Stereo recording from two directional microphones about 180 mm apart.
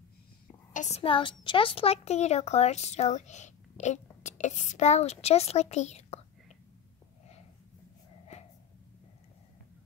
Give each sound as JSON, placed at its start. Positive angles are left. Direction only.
{"t": 0.7, "sound": "a woman's voice", "side_deg": 40}